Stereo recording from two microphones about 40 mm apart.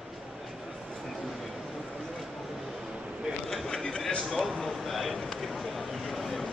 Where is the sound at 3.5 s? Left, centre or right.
Centre.